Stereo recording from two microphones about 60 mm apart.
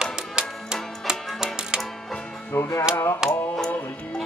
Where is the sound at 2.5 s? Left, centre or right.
Left.